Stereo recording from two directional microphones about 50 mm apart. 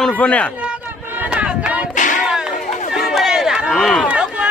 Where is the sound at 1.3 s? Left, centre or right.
Right.